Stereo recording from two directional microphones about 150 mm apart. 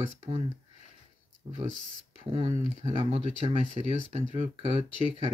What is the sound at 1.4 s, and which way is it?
Speech, 30° right (ahead or behind).